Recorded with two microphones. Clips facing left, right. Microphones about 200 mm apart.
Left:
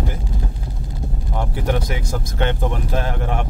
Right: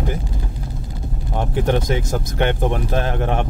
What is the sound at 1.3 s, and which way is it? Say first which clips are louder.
Speech: right 3 dB; 25° right (ahead or behind).